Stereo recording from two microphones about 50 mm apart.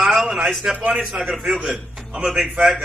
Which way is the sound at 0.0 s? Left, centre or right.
Centre.